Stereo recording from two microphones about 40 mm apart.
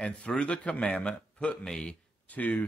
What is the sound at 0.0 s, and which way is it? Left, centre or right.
A man's voice, left.